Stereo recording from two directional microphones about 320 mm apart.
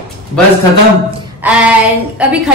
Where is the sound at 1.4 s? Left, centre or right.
Centre.